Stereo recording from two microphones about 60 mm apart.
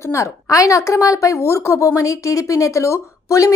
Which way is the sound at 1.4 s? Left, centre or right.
Left.